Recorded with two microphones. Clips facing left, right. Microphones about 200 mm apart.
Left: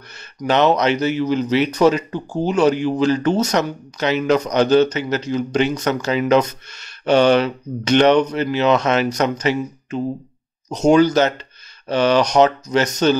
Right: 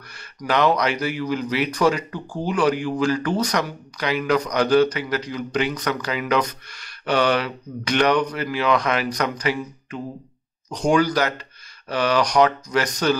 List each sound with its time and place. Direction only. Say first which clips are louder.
0.4 s speech: left 4 dB; 25° left (ahead or behind)